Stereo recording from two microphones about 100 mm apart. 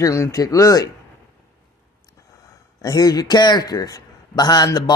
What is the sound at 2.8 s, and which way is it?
A man's voice, 40° left (ahead or behind).